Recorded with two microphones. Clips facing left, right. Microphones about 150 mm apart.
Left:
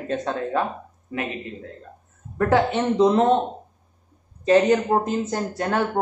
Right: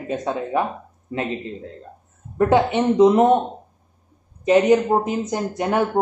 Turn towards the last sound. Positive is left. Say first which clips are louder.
# right 3 dB
turn(degrees=-15)  # may be behind; listen again after turning